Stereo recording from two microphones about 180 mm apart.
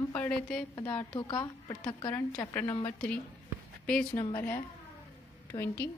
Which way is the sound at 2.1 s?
10° left (ahead or behind).